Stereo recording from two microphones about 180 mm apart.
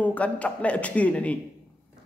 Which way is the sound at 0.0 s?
10° left (ahead or behind).